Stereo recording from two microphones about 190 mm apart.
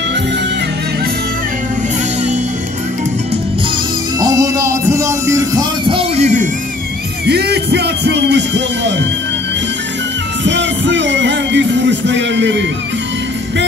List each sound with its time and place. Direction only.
4.2 s music: 20° right (ahead or behind)
5.9 s music: 30° right (ahead or behind)
7.2 s music: 60° right (ahead or behind)
10.4 s music: 70° right (ahead or behind)